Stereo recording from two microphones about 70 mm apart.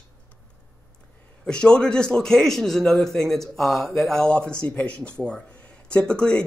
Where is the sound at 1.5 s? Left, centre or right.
Centre.